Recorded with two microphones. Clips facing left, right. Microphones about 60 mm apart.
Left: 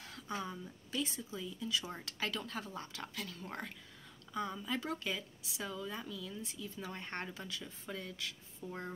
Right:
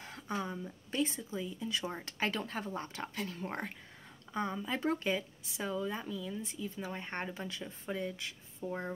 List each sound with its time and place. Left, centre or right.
0.0 s speech: right
0.9 s speech: right
7.4 s speech: right